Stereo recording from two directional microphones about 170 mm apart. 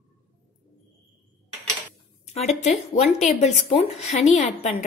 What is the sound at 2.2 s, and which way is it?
A woman's voice, 40° left (ahead or behind).